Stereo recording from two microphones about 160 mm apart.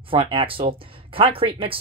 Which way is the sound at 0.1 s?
35° right (ahead or behind).